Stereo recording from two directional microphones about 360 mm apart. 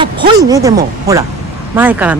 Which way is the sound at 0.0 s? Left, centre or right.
Centre.